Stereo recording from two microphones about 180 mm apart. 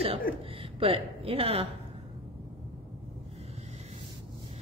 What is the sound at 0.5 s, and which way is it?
Speech, 30° right (ahead or behind).